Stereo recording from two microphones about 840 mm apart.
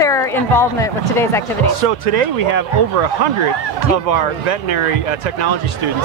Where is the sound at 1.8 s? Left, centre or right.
Right.